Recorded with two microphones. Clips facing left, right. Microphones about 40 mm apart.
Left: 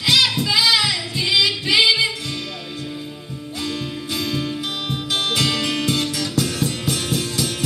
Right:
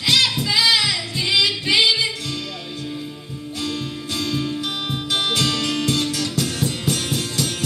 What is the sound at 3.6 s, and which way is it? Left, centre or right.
Music, centre.